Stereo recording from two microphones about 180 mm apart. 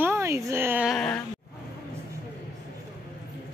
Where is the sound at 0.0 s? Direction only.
15° right (ahead or behind).